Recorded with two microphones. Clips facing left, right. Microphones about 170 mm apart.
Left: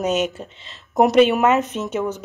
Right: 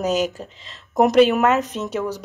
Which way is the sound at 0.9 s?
Centre (ahead or behind).